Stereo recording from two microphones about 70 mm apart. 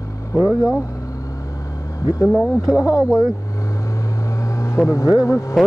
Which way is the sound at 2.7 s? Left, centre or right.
Left.